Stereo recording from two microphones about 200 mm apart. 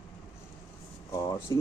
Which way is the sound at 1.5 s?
20° left (ahead or behind).